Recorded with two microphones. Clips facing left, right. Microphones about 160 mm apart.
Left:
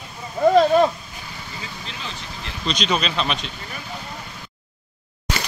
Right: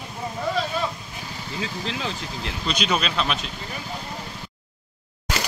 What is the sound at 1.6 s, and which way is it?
Vehicle, 90° right.